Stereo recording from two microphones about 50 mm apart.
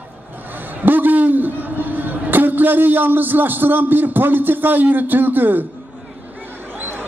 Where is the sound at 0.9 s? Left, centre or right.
Right.